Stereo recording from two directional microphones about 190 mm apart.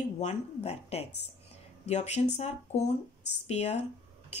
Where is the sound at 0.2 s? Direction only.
35° left (ahead or behind).